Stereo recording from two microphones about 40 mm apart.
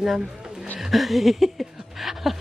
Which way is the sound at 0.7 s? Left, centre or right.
Centre.